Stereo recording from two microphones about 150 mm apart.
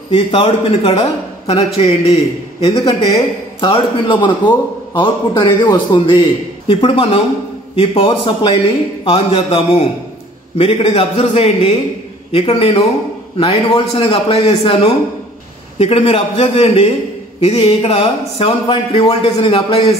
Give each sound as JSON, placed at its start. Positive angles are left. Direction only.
{"t": 0.1, "sound": "a man's voice", "side_deg": 35}